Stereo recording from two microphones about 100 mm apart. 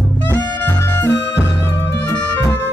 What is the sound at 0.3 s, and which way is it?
Music, 25° left (ahead or behind).